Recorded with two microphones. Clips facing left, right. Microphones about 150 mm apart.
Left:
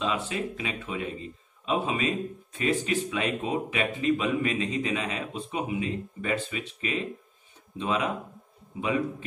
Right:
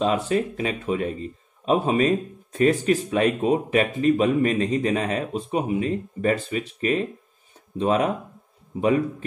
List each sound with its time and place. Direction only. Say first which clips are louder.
0.0 s speech: right 8 dB; 45° right (ahead or behind)